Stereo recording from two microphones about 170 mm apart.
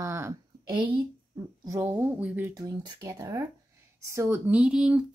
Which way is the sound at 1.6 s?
15° right (ahead or behind).